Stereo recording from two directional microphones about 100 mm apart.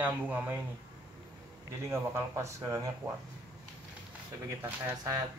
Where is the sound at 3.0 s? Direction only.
40° right (ahead or behind).